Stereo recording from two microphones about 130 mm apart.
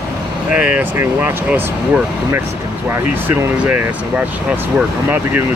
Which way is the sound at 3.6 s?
10° right (ahead or behind).